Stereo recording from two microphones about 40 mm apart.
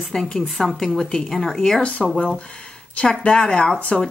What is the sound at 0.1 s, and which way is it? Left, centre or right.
A woman's voice, centre.